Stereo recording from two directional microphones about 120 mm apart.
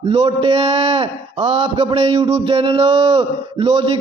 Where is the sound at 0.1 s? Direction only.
50° right (ahead or behind).